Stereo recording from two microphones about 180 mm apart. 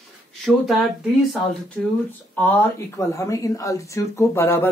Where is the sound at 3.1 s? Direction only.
15° left (ahead or behind).